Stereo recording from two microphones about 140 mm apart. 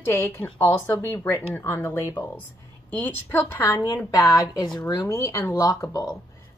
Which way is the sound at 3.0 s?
15° left (ahead or behind).